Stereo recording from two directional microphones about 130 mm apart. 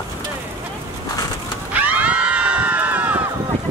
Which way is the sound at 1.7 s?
15° right (ahead or behind).